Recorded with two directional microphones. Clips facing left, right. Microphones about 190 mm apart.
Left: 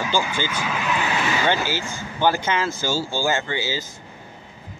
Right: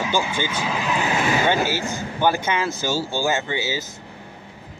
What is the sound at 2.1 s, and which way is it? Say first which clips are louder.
Speech: left 1 dB; 15° right (ahead or behind).